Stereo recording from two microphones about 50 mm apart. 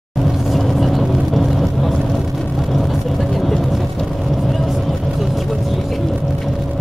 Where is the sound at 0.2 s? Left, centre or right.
Centre.